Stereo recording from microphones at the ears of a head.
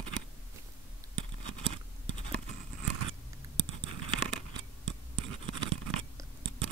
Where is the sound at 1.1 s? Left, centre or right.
Right.